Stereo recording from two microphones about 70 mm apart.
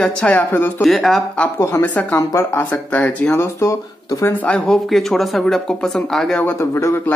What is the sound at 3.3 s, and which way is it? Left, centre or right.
Speech, left.